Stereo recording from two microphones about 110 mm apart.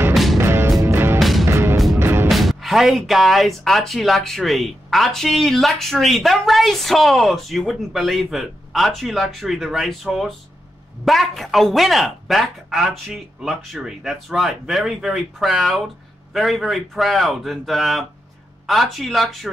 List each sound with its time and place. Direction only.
0.1 s music: centre (ahead or behind)
0.4 s music: 20° right (ahead or behind)
2.2 s music: centre (ahead or behind)
3.0 s speech: centre (ahead or behind)